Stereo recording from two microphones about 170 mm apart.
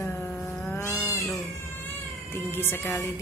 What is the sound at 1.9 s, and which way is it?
Speech, 15° left (ahead or behind).